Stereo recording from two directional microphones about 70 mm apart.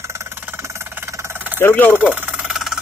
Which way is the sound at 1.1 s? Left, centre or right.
Right.